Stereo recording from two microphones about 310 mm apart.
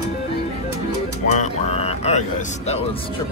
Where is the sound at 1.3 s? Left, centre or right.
Left.